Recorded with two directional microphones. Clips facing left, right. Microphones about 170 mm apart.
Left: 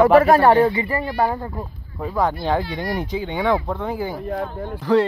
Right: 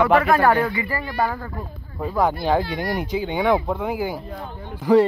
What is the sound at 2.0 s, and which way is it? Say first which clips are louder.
Speech: even; 5° right (ahead or behind).